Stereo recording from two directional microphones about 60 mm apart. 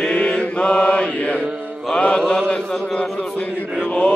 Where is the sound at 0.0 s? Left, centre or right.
Centre.